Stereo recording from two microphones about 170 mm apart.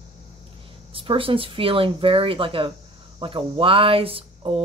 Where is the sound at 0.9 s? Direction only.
30° right (ahead or behind).